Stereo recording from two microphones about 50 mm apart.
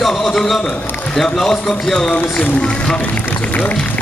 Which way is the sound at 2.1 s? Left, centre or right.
Left.